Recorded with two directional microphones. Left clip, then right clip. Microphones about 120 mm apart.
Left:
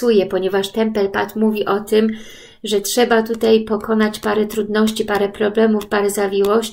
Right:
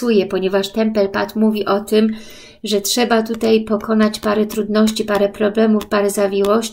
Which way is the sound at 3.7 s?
25° right (ahead or behind).